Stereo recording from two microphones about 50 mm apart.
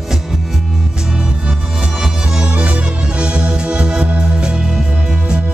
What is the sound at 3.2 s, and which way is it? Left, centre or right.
Music, right.